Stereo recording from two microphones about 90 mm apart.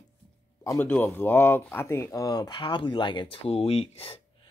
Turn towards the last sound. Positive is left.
turn(degrees=90)